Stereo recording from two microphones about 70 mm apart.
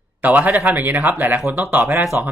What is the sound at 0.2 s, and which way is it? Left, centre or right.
Speech, right.